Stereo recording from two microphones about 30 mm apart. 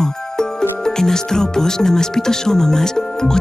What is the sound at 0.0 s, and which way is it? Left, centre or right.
Speech, left.